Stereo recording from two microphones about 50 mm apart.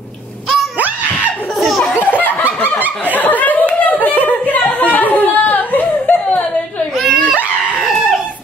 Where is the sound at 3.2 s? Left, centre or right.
Left.